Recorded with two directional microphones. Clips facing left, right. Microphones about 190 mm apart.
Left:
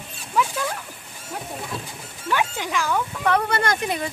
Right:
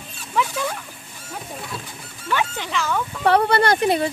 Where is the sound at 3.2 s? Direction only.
30° right (ahead or behind).